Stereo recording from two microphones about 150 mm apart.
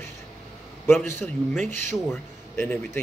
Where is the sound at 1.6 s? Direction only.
55° right (ahead or behind).